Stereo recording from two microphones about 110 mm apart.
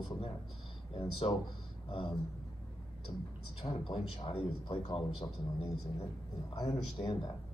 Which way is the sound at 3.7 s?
45° left (ahead or behind).